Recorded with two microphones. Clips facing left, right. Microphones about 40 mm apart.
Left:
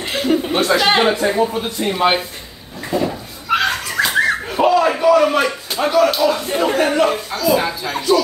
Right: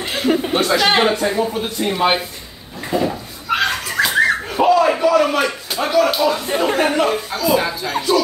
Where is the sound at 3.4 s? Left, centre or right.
Centre.